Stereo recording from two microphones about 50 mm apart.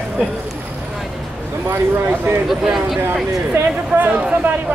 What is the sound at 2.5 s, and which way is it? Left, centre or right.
Speech, centre.